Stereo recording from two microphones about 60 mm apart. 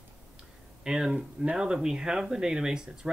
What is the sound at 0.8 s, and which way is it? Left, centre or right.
Speech, centre.